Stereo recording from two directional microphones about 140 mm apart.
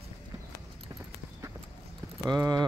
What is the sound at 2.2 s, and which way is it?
Speech, 25° right (ahead or behind).